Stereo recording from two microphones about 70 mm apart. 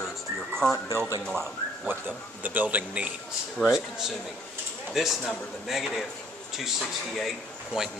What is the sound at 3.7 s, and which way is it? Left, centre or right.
Speech, centre.